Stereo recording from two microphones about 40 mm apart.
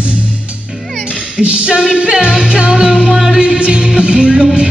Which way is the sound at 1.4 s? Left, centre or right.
Right.